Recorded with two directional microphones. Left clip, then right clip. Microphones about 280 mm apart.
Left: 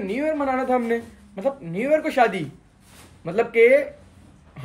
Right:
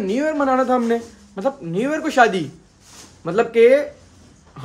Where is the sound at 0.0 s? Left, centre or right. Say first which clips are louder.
Right 4 dB; centre.